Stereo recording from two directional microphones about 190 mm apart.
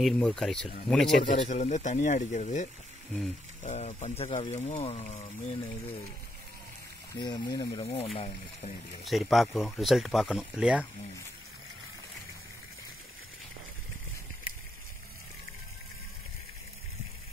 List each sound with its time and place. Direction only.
0.0 s speech: 5° left (ahead or behind)
1.4 s speech: 40° left (ahead or behind)
7.2 s speech: 20° left (ahead or behind)
9.0 s speech: centre (ahead or behind)